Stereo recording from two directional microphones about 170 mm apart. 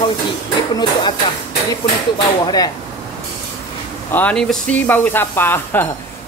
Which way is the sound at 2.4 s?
20° left (ahead or behind).